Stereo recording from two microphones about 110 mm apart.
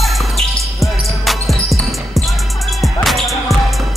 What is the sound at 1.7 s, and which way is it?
Basketball bounce, centre (ahead or behind).